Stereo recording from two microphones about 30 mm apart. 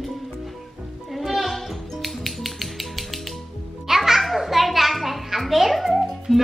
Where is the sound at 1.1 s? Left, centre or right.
Centre.